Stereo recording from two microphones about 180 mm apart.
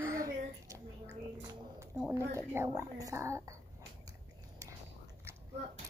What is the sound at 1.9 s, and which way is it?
A woman's voice, 15° right (ahead or behind).